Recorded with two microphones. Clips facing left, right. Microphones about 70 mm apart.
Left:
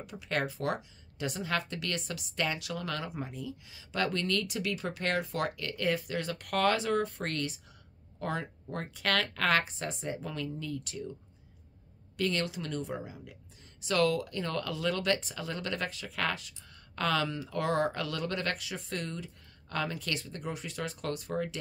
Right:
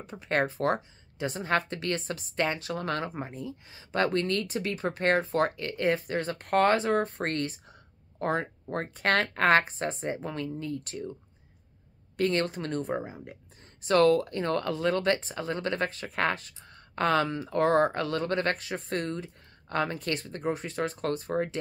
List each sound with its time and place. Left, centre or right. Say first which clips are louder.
0.0 s speech: right 5 dB; right
12.2 s speech: right 5 dB; right